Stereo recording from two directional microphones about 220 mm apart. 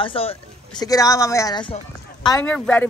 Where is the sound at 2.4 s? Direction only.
10° left (ahead or behind).